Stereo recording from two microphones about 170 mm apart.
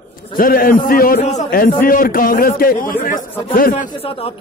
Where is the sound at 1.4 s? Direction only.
55° left (ahead or behind).